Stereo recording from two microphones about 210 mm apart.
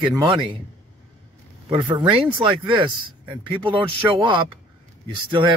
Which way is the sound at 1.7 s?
20° right (ahead or behind).